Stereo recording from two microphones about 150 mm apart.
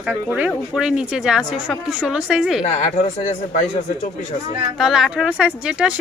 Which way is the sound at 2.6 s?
50° left (ahead or behind).